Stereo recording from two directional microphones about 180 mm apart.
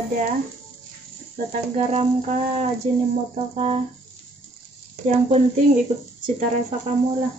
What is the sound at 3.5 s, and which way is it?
Speech, 35° right (ahead or behind).